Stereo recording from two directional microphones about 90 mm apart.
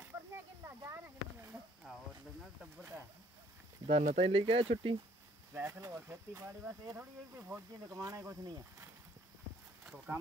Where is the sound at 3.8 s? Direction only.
90° right.